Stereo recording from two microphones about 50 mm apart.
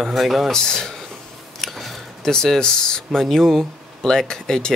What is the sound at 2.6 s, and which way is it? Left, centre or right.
Speech, centre.